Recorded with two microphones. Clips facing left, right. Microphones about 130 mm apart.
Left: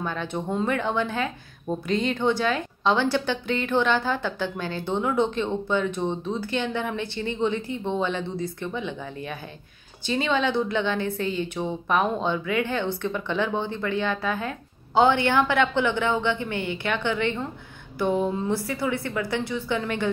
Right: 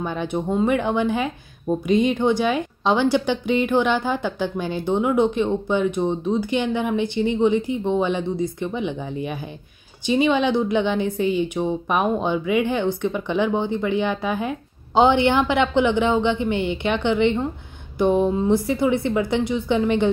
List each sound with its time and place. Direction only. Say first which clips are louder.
0.0 s a woman's voice: right 4 dB; 15° right (ahead or behind)